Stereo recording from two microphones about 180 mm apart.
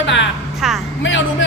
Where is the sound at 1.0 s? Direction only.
90° left.